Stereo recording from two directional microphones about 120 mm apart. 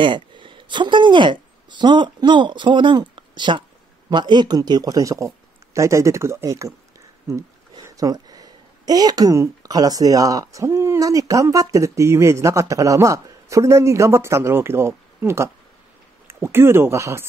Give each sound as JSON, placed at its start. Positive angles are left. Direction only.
{"t": 0.0, "sound": "speech", "side_deg": -40}
{"t": 7.8, "sound": "speech", "side_deg": -30}